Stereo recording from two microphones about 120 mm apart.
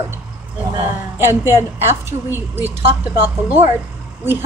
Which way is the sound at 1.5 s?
20° right (ahead or behind).